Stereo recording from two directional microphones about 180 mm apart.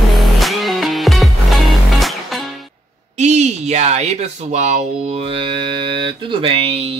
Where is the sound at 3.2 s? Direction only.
40° right (ahead or behind).